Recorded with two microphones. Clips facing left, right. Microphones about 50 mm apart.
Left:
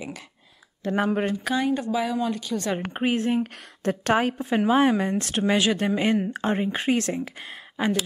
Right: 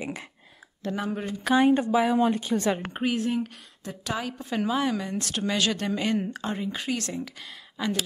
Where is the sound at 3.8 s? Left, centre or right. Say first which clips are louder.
Left 10 dB; left.